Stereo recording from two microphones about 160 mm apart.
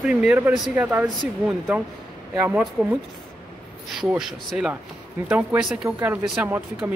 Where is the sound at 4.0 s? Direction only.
5° right (ahead or behind).